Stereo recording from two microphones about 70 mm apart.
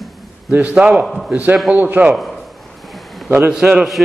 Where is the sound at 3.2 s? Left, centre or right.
Right.